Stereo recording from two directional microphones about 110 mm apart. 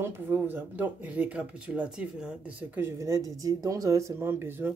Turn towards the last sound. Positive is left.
turn(degrees=-20)  # may be behind; listen again after turning